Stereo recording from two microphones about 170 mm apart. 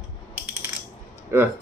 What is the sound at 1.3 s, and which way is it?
Speech, 15° right (ahead or behind).